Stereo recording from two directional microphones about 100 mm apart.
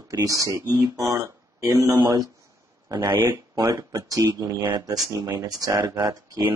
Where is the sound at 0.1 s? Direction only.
35° right (ahead or behind).